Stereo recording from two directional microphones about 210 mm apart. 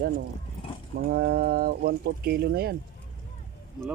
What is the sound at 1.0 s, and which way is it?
Speech, 45° right (ahead or behind).